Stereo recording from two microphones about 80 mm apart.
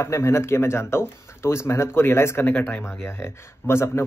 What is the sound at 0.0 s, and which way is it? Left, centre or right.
Speech, left.